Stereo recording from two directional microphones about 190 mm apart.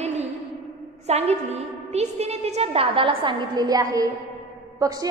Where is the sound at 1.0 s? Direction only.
35° right (ahead or behind).